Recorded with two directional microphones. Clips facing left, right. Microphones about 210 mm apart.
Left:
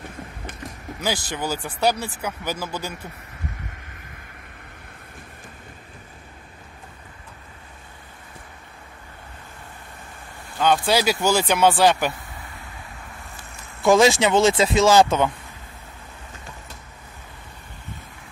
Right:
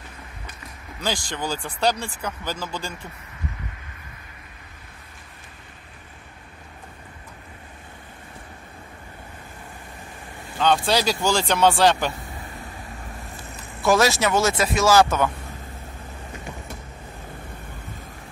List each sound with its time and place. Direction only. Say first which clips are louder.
1.0 s speech: left 1 dB; 10° left (ahead or behind)
10.6 s speech: left 1 dB; 5° left (ahead or behind)
13.8 s speech: left 3 dB; 15° left (ahead or behind)